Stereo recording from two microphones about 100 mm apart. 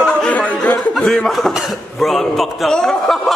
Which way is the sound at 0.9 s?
5° left (ahead or behind).